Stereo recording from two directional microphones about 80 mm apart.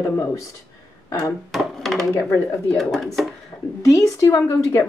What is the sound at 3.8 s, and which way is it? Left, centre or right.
A woman's voice, left.